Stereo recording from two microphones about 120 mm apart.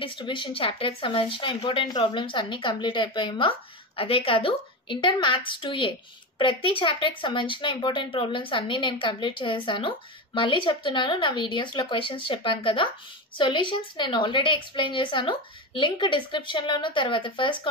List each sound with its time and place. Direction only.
0.0 s a woman's voice: 45° left (ahead or behind)